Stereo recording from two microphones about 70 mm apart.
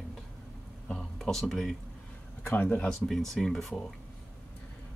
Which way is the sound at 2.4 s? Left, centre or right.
Left.